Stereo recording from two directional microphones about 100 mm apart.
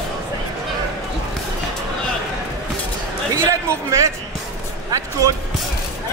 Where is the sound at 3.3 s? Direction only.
30° right (ahead or behind).